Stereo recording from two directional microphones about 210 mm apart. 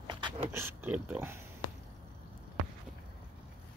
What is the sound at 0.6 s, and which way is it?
Speech, 10° right (ahead or behind).